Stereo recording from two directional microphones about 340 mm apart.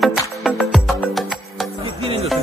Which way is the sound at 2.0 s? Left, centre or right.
Centre.